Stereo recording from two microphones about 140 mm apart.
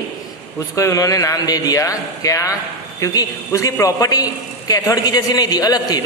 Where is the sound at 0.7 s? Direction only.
20° left (ahead or behind).